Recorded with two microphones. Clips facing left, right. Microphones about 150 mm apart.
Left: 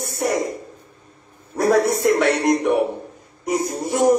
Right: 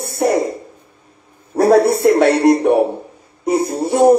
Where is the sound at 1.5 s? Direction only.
30° right (ahead or behind).